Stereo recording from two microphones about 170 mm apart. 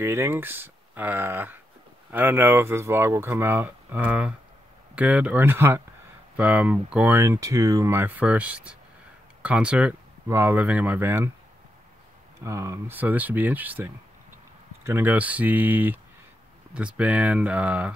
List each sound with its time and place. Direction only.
0.0 s speech: 15° right (ahead or behind)
12.4 s speech: 15° right (ahead or behind)
14.9 s speech: 10° right (ahead or behind)